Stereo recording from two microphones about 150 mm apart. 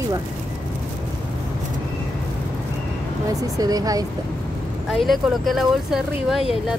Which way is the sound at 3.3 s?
25° right (ahead or behind).